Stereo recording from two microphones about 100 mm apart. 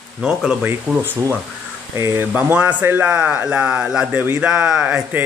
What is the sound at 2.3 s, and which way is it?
Speech, 15° right (ahead or behind).